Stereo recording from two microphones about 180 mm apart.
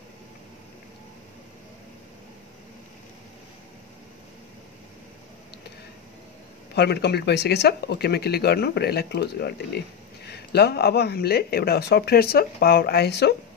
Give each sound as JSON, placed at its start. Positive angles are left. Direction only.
{"t": 6.7, "sound": "speech", "side_deg": 65}